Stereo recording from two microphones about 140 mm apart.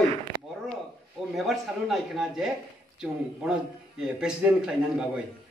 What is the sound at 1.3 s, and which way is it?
Speech, centre (ahead or behind).